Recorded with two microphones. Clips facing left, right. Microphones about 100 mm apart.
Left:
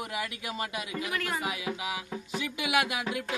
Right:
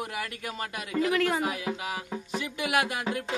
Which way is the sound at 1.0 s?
85° right.